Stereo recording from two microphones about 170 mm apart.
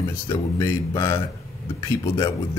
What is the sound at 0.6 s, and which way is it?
Speech, 20° left (ahead or behind).